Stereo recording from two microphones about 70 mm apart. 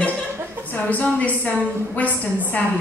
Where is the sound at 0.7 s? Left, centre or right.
Left.